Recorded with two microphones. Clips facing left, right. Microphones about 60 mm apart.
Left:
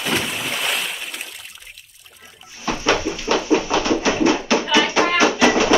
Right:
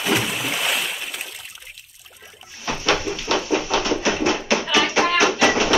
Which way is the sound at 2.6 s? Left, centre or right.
Left.